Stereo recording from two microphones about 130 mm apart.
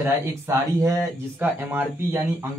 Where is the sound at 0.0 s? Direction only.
20° right (ahead or behind).